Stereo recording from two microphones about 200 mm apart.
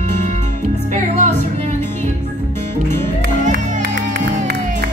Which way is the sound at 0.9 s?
35° right (ahead or behind).